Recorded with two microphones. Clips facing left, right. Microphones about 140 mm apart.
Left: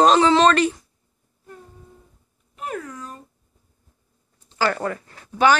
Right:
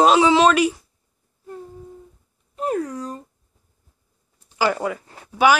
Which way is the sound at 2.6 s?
35° right (ahead or behind).